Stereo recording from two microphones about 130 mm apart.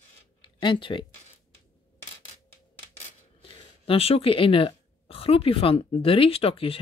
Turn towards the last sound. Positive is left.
turn(degrees=45)  # may be behind; listen again after turning